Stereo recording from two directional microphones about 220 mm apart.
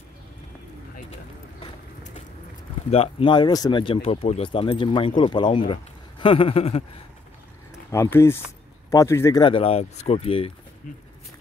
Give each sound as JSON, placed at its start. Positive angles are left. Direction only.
{"t": 1.6, "sound": "vehicle", "side_deg": 35}
{"t": 2.9, "sound": "speech", "side_deg": 25}
{"t": 7.9, "sound": "speech", "side_deg": 10}